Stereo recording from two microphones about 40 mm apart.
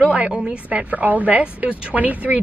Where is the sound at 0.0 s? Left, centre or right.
Right.